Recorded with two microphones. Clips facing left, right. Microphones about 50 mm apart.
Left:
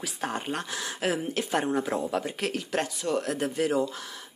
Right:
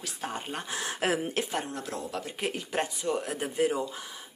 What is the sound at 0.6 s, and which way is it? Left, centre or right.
Speech, right.